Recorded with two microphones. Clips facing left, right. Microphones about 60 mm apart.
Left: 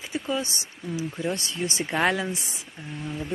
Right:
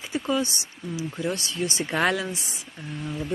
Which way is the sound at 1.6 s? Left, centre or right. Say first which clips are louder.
Even; centre.